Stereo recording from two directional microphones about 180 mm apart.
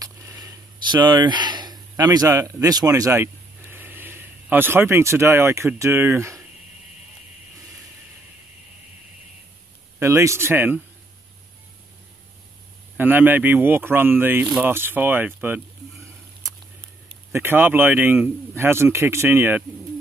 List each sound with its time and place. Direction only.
0.0 s speech: 20° right (ahead or behind)
9.9 s speech: 15° right (ahead or behind)
12.9 s speech: 10° right (ahead or behind)
17.3 s speech: 10° right (ahead or behind)